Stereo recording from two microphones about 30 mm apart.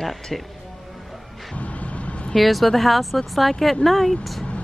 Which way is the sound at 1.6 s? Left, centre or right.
Left.